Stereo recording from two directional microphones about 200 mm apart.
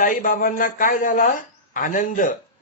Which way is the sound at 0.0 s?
40° left (ahead or behind).